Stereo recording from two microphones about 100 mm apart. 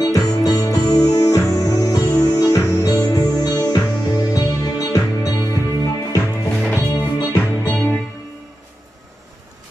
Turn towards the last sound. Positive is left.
turn(degrees=15)  # may be behind; listen again after turning